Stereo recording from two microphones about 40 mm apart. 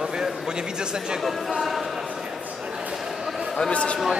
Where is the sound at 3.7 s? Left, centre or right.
Left.